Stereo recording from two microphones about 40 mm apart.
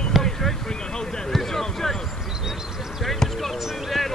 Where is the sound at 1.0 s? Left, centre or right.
Centre.